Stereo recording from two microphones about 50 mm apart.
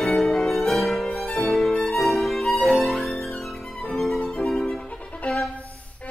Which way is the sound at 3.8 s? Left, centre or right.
Centre.